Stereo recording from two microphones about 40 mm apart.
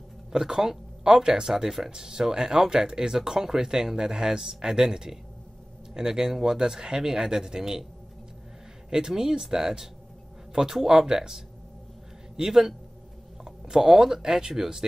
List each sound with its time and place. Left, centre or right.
0.3 s speech: centre
1.9 s speech: centre
8.9 s speech: centre